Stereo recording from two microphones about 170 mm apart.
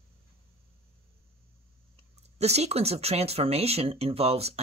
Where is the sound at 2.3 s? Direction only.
40° right (ahead or behind).